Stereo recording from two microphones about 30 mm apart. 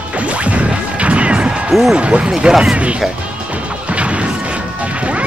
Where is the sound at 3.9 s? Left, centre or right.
Right.